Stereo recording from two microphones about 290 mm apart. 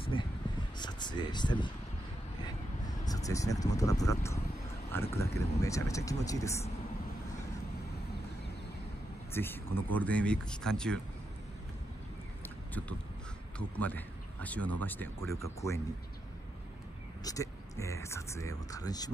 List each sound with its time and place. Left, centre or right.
0.0 s a sound: centre
3.1 s speech: centre
9.3 s speech: centre
13.6 s speech: centre
17.2 s speech: centre